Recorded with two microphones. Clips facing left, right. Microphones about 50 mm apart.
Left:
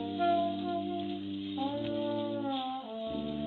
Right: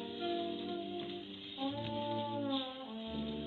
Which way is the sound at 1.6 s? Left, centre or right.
Centre.